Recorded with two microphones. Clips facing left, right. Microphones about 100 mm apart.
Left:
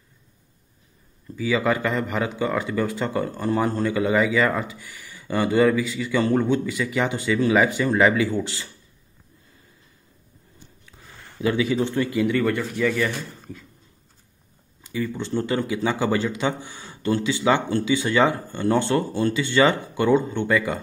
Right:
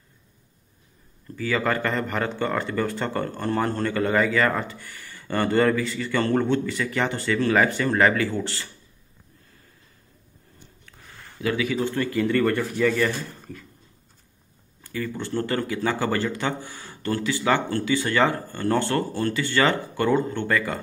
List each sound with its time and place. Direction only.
1.3 s speech: 10° left (ahead or behind)
10.9 s speech: 20° left (ahead or behind)
14.8 s speech: 15° left (ahead or behind)